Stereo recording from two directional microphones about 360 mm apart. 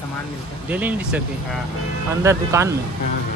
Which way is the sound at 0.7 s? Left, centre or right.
Centre.